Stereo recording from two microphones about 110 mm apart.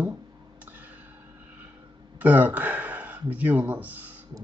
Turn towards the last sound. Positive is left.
turn(degrees=-15)  # may be behind; listen again after turning